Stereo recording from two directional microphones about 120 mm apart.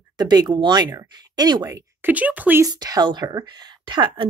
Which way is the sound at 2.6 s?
35° right (ahead or behind).